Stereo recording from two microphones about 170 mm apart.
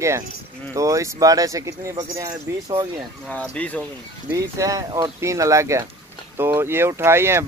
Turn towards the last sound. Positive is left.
turn(degrees=-15)  # may be behind; listen again after turning